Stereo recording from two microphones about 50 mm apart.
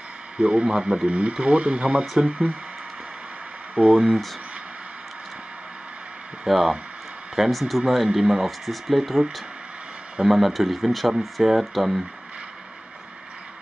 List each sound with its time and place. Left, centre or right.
0.4 s speech: centre
3.7 s speech: right
6.4 s speech: centre